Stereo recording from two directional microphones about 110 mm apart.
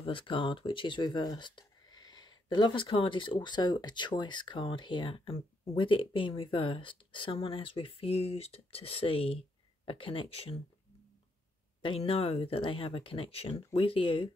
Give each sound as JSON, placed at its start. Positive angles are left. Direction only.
{"t": 0.0, "sound": "speech", "side_deg": 50}
{"t": 11.8, "sound": "speech", "side_deg": 55}